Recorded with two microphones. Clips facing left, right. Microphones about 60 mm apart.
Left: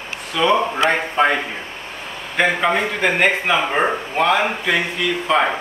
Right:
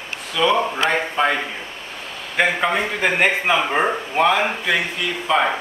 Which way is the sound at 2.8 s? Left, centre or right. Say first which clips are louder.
Left 1 dB; centre.